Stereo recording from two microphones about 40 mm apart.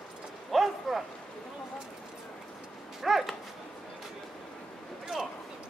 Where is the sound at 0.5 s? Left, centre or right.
Centre.